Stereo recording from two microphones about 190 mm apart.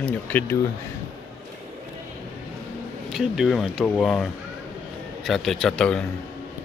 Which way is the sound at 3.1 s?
Centre (ahead or behind).